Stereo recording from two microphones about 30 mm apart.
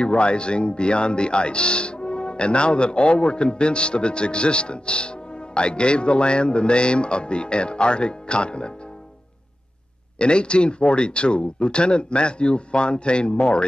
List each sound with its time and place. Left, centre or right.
0.0 s speech: left
10.1 s speech: left